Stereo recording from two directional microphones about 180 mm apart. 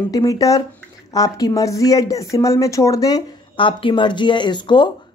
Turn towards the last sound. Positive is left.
turn(degrees=25)  # may be behind; listen again after turning